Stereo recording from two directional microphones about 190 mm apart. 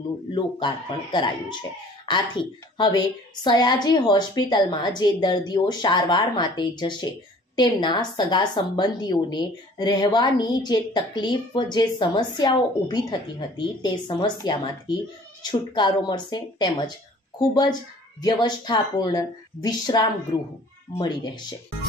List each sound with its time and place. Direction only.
0.3 s a woman's voice: 25° left (ahead or behind)